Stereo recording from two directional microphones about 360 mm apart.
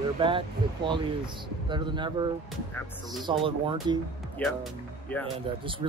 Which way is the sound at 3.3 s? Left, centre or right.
Centre.